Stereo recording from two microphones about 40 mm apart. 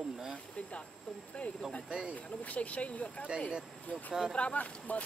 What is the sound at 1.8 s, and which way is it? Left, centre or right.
Speech, right.